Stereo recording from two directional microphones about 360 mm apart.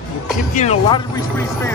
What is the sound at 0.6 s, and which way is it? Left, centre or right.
Speech, centre.